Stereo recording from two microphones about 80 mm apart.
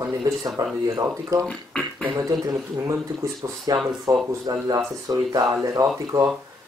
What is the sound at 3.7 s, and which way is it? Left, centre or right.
Speech, right.